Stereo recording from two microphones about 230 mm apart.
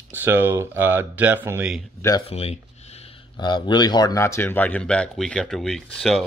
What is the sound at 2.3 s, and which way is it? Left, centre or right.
Speech, left.